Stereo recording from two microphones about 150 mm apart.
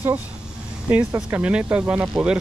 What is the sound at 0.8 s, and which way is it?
Speech, 10° right (ahead or behind).